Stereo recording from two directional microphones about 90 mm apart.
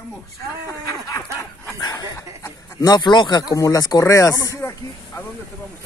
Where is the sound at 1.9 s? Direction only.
40° left (ahead or behind).